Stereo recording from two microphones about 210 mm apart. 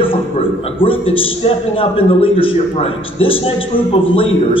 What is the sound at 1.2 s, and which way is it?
A man's voice, 25° left (ahead or behind).